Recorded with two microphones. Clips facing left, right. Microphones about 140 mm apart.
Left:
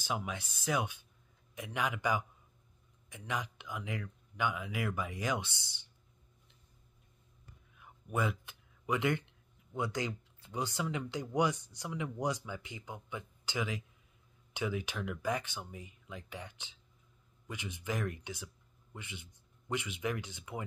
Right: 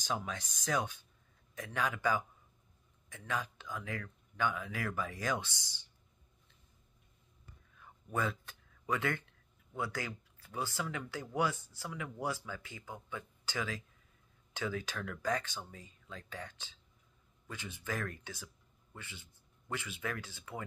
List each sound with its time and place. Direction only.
0.0 s speech: 10° left (ahead or behind)
7.7 s a sound: 15° left (ahead or behind)
9.8 s speech: 20° left (ahead or behind)